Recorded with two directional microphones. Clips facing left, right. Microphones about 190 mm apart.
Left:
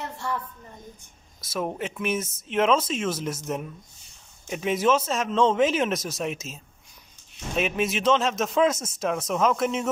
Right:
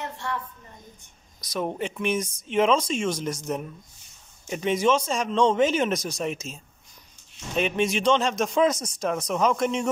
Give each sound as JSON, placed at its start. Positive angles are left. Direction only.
{"t": 1.4, "sound": "a man's voice", "side_deg": 5}